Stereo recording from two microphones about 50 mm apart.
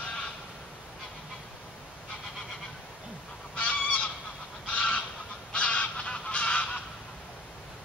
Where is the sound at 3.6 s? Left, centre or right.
Left.